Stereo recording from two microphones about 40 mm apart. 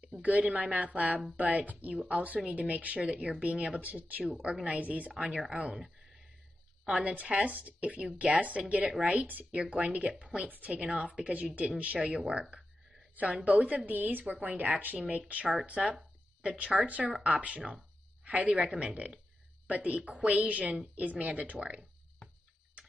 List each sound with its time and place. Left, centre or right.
0.0 s a woman's voice: right
4.6 s a woman's voice: right
5.3 s speech: right
6.9 s a woman's voice: right
13.1 s a woman's voice: right